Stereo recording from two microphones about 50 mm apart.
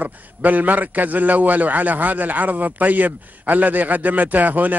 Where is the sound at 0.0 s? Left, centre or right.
Right.